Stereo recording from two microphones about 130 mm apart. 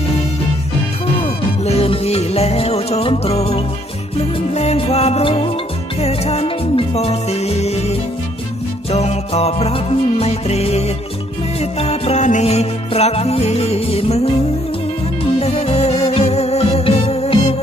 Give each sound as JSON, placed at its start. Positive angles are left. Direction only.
{"t": 1.2, "sound": "music", "side_deg": 50}
{"t": 8.9, "sound": "music", "side_deg": 55}
{"t": 15.3, "sound": "music", "side_deg": 50}